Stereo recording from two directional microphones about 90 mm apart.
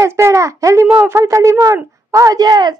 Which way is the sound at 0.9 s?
25° right (ahead or behind).